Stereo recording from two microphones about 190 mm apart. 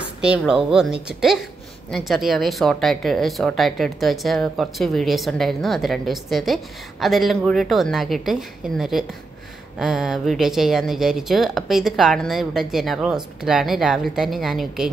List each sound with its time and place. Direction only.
0.2 s speech: 5° right (ahead or behind)